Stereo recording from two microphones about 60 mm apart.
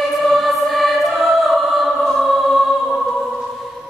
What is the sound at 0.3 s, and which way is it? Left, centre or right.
Choir, centre.